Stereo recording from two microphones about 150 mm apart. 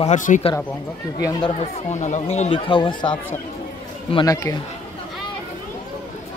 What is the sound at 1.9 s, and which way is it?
Speech, 50° left (ahead or behind).